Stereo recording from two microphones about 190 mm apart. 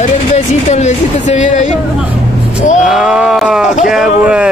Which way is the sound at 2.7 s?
Centre (ahead or behind).